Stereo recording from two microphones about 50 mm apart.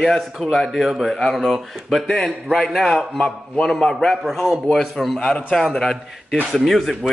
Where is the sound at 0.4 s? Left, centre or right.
Centre.